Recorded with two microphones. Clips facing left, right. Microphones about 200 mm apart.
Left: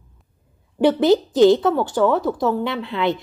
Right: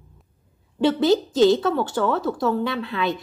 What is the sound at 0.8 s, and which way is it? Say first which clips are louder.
A woman's voice: left 3 dB; 20° left (ahead or behind).